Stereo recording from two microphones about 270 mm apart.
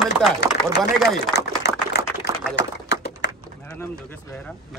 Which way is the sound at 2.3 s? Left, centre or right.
Centre.